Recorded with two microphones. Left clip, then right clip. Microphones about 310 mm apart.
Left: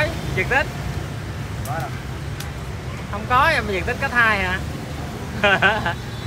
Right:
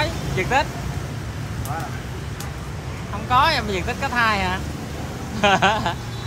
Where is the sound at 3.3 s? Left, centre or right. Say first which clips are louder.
Left 1 dB; centre.